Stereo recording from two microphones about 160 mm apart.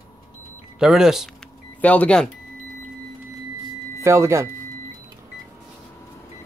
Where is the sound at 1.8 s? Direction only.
10° left (ahead or behind).